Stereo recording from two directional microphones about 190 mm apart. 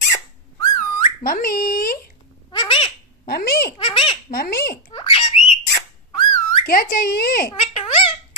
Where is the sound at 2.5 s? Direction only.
25° left (ahead or behind).